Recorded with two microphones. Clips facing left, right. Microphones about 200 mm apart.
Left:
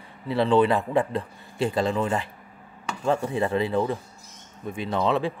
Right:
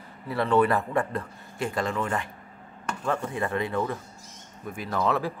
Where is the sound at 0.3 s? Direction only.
30° left (ahead or behind).